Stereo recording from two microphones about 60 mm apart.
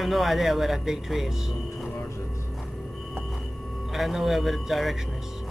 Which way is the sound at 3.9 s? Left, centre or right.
Centre.